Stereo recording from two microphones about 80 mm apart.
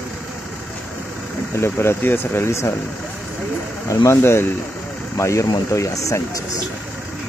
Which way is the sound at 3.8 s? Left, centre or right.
Left.